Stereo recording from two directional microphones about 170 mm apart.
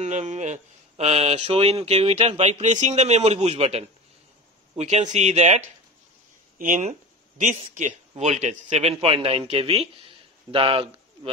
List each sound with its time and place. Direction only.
0.0 s speech: 40° right (ahead or behind)
6.6 s speech: 50° right (ahead or behind); by 10.9 s 30° right (ahead or behind)